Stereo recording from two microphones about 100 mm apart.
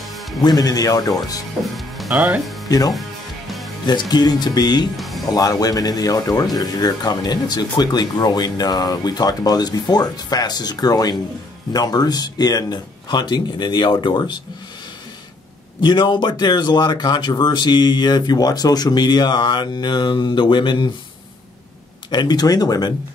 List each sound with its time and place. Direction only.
0.0 s music: centre (ahead or behind)
0.4 s speech: 40° left (ahead or behind)
1.6 s speech: centre (ahead or behind)
2.7 s speech: 40° left (ahead or behind)
3.4 s music: centre (ahead or behind)
3.8 s speech: 45° left (ahead or behind)
4.9 s music: centre (ahead or behind)
5.3 s speech: 35° left (ahead or behind)
15.8 s speech: 50° left (ahead or behind)
22.1 s speech: 45° left (ahead or behind)